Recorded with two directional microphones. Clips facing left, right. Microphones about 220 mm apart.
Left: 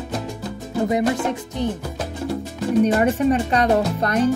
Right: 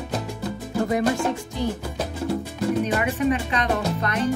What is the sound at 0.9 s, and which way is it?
Music, 20° left (ahead or behind).